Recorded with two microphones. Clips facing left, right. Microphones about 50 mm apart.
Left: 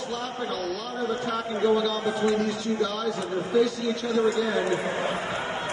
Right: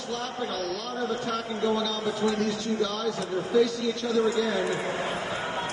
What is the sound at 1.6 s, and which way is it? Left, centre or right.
Speech, centre.